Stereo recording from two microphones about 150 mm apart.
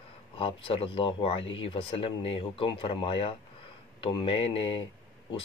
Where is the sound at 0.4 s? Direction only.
35° left (ahead or behind).